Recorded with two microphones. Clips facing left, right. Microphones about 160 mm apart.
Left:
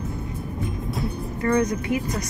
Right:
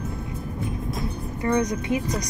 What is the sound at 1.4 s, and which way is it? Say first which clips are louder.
Speech: left 1 dB; 20° right (ahead or behind).